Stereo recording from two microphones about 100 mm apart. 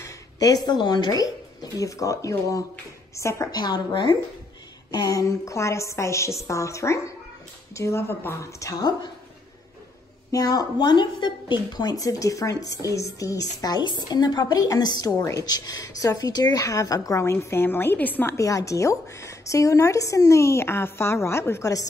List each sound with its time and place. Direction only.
0.0 s a sound: 40° left (ahead or behind)
0.7 s a woman's voice: 45° left (ahead or behind); by 3.4 s 30° left (ahead or behind)
3.5 s a woman's voice: 45° left (ahead or behind)
10.3 s speech: 40° left (ahead or behind); by 18.3 s 20° left (ahead or behind)
18.3 s speech: 30° left (ahead or behind)